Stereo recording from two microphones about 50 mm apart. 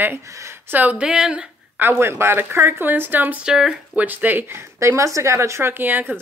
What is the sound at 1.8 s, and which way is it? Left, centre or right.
Speech, right.